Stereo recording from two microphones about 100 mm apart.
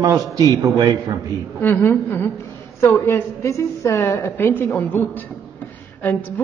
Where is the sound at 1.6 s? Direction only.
20° left (ahead or behind).